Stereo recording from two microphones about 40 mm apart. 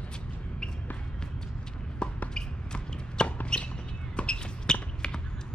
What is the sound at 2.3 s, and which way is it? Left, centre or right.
Drip, left.